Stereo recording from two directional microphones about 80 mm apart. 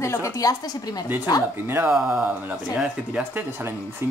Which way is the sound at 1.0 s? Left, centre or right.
Right.